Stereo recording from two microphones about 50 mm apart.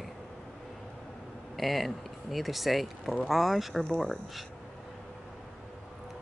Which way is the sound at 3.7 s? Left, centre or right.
Centre.